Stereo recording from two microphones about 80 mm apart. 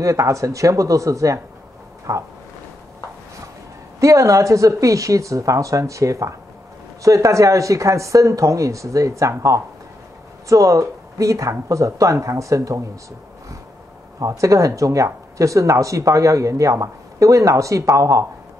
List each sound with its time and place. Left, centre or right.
0.0 s speech: right
4.0 s speech: right
14.2 s speech: right